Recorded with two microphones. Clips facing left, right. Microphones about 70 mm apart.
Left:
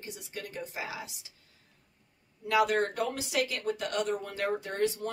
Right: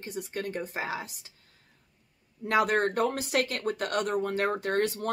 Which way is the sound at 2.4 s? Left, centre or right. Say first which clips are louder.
Right 1 dB; right.